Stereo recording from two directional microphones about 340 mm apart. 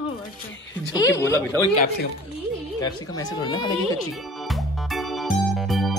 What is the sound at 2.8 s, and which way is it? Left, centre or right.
Speech, centre.